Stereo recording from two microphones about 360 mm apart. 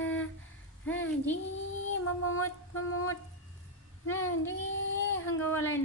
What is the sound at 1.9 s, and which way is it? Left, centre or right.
Female singing, left.